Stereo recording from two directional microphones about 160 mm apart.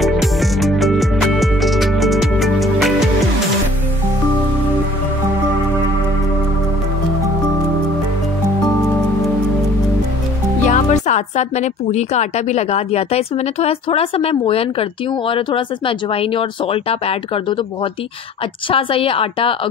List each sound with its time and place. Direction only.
0.0 s music: centre (ahead or behind)
10.7 s speech: 50° left (ahead or behind)
18.7 s speech: 35° left (ahead or behind)